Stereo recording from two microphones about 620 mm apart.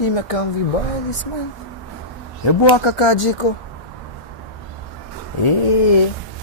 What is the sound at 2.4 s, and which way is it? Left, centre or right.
Speech, left.